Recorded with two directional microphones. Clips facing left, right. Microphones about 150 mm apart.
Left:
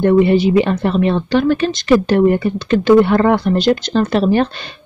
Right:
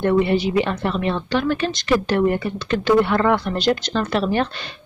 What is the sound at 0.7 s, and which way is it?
Speech, 30° left (ahead or behind).